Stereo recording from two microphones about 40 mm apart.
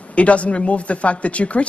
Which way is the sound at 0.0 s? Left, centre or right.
Left.